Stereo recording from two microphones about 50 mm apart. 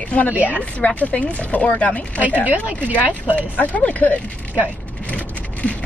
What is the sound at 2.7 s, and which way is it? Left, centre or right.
Speech, right.